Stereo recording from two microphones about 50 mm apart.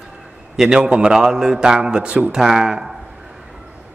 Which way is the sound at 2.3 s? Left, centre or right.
Centre.